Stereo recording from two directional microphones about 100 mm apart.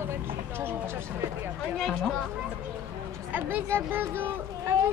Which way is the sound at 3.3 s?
15° right (ahead or behind).